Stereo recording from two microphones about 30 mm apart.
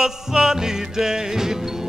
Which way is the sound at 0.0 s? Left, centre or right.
Centre.